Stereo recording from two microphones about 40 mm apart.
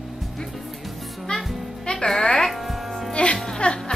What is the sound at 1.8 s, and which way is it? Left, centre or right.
Music, centre.